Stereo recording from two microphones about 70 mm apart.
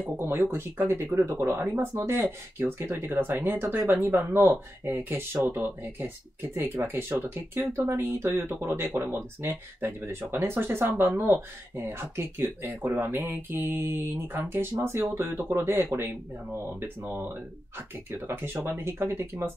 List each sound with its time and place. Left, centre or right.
0.2 s speech: right